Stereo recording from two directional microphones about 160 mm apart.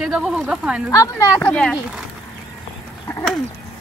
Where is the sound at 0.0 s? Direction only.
Centre (ahead or behind).